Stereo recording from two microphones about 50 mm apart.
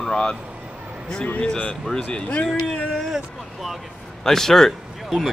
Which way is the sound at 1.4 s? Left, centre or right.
Centre.